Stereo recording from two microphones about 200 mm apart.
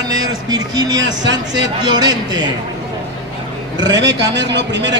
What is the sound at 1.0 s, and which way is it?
Speech, 65° right (ahead or behind).